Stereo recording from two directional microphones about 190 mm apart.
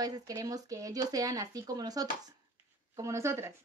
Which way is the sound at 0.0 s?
20° right (ahead or behind).